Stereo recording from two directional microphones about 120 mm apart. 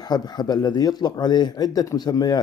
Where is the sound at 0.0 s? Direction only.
35° left (ahead or behind).